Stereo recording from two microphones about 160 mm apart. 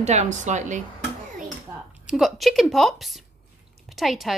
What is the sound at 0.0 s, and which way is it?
Speech, 45° right (ahead or behind).